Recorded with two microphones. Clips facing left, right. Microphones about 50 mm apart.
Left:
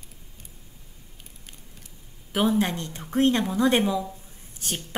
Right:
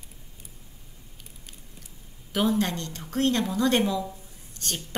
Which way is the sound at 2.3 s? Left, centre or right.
Centre.